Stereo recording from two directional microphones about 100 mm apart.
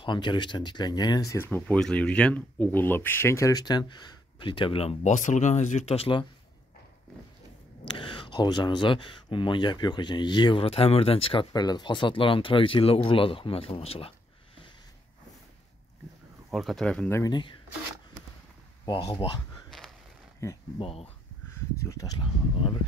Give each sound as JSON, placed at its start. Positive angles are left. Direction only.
{"t": 0.0, "sound": "speech", "side_deg": 50}
{"t": 1.4, "sound": "speech", "side_deg": 20}
{"t": 1.8, "sound": "speech", "side_deg": 5}
{"t": 7.8, "sound": "speech", "side_deg": 55}
{"t": 10.6, "sound": "speech", "side_deg": 75}
{"t": 11.5, "sound": "speech", "side_deg": 45}
{"t": 16.4, "sound": "speech", "side_deg": 0}
{"t": 17.2, "sound": "speech", "side_deg": 50}
{"t": 18.9, "sound": "speech", "side_deg": 50}
{"t": 20.4, "sound": "speech", "side_deg": 25}
{"t": 20.8, "sound": "speech", "side_deg": 75}
{"t": 21.5, "sound": "speech", "side_deg": 30}
{"t": 22.2, "sound": "speech", "side_deg": 60}